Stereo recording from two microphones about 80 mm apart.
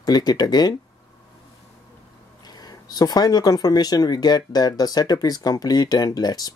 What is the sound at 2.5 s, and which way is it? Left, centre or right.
Speech, left.